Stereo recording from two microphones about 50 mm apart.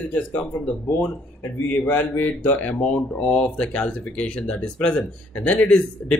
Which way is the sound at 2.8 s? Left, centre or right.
Left.